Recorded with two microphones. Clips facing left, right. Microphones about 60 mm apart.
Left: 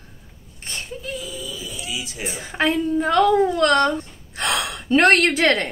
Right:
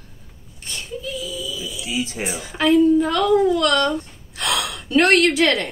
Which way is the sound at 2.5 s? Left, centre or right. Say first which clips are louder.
Right 6 dB; left.